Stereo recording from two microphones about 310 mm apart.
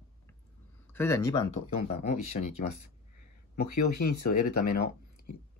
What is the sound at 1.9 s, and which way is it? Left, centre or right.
Speech, left.